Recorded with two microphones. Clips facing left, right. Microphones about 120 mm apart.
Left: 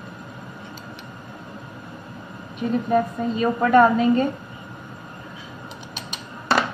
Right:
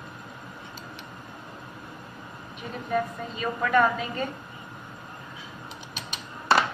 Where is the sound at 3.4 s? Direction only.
35° left (ahead or behind).